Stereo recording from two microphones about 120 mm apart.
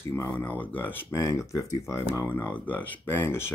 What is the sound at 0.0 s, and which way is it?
Speech, 20° left (ahead or behind).